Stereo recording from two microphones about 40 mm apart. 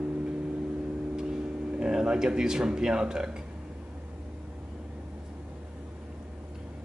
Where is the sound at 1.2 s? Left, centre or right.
Centre.